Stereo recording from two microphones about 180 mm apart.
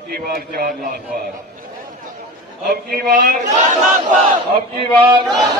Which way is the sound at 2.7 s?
50° right (ahead or behind).